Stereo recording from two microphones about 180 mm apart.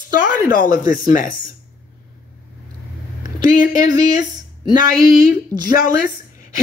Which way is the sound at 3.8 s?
20° right (ahead or behind).